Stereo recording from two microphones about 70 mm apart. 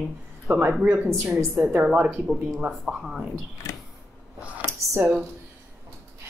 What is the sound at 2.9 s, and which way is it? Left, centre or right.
Speech, centre.